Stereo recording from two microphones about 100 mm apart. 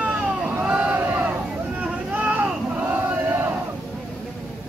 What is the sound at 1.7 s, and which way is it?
Battle cry, 15° right (ahead or behind).